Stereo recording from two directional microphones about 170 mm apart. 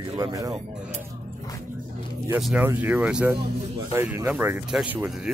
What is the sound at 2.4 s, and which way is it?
Speech, 10° right (ahead or behind).